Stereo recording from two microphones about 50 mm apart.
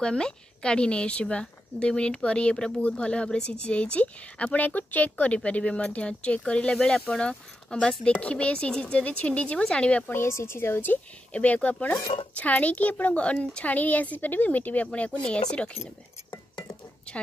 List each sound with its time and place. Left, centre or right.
0.0 s a woman's voice: centre; by 5.3 s left
5.3 s a woman's voice: left
10.1 s a woman's voice: left
11.3 s a woman's voice: left
13.7 s speech: left
16.5 s dishes: left